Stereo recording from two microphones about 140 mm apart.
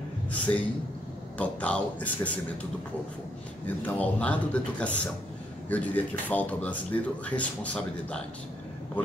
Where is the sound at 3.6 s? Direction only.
10° left (ahead or behind).